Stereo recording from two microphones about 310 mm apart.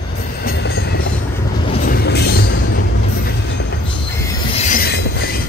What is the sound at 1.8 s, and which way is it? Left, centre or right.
Music, left.